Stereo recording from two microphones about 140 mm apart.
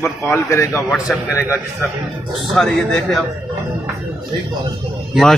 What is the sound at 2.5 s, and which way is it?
Speech, 5° left (ahead or behind).